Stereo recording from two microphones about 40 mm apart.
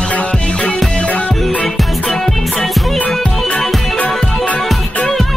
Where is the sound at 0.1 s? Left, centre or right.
Left.